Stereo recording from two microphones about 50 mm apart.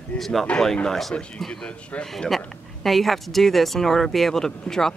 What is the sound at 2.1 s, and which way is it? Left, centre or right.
Speech, centre.